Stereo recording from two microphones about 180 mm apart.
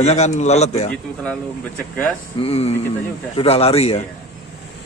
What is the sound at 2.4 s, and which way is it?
A man's voice, 35° left (ahead or behind).